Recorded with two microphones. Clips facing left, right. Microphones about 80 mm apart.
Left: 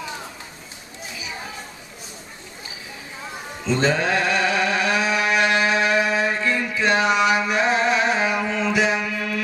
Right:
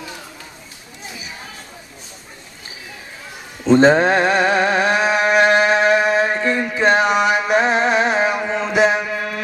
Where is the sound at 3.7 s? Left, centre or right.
Right.